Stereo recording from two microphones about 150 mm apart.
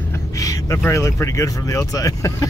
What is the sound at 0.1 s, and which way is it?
Speech, 20° left (ahead or behind).